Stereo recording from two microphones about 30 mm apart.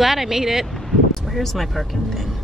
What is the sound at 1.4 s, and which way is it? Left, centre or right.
Speech, centre.